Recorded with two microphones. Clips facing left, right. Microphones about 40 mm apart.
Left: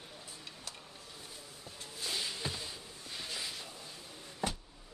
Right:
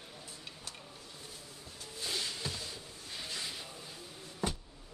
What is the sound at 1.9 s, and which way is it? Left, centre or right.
Music, centre.